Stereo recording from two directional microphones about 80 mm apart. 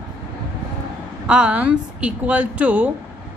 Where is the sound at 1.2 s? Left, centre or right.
Centre.